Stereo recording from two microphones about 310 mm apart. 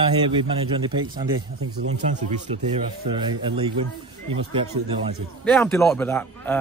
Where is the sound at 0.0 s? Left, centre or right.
Centre.